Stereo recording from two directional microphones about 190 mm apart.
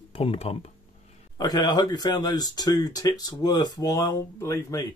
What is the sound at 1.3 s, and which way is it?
Speech, 20° left (ahead or behind).